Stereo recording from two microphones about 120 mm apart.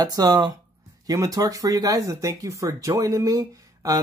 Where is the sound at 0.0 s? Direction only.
30° right (ahead or behind).